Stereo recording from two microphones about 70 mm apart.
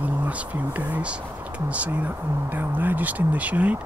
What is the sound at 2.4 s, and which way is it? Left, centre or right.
Speech, right.